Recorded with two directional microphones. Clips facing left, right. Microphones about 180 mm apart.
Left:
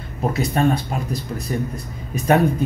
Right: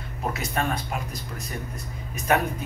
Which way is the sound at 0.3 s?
35° left (ahead or behind).